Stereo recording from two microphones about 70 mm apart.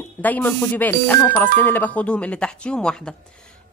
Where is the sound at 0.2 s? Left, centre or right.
Left.